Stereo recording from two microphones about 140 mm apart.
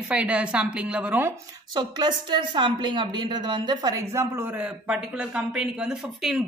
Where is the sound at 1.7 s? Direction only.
30° right (ahead or behind).